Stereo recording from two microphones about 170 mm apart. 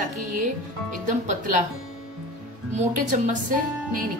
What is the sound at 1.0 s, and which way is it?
Speech, 50° right (ahead or behind).